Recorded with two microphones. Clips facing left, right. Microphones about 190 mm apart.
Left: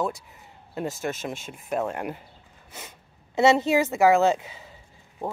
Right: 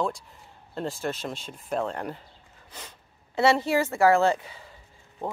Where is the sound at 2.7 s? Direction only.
10° left (ahead or behind).